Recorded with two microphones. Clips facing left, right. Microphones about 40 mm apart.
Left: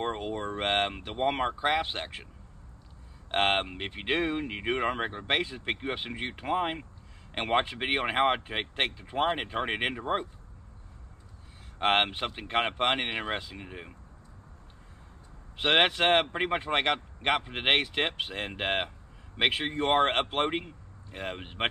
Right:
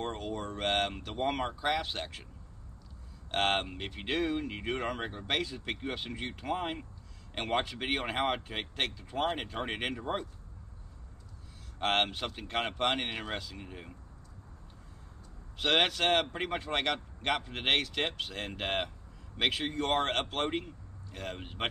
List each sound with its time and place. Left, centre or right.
0.0 s speech: left
3.3 s speech: left
11.8 s speech: left
15.5 s speech: left